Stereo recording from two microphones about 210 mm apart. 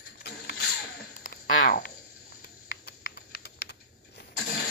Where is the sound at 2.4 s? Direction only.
45° left (ahead or behind).